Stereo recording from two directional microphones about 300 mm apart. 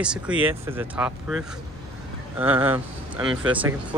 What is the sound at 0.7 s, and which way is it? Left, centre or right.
Speech, centre.